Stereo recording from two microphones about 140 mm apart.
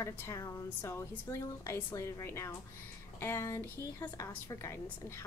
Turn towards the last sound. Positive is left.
turn(degrees=20)  # may be behind; listen again after turning